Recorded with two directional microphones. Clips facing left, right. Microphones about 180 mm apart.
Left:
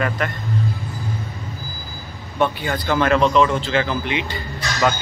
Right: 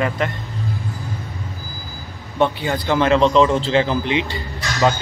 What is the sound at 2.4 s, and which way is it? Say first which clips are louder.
Speech: right 2 dB; 20° right (ahead or behind).